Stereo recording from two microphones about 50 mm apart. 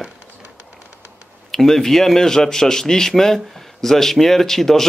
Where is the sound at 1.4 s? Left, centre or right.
Centre.